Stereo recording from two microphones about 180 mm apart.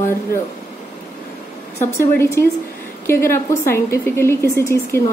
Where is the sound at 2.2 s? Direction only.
15° left (ahead or behind).